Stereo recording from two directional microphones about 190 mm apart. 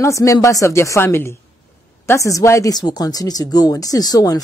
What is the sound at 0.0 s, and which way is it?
Speech, 15° left (ahead or behind).